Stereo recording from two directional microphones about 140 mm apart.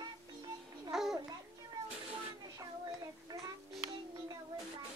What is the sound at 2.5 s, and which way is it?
Child singing, 30° right (ahead or behind).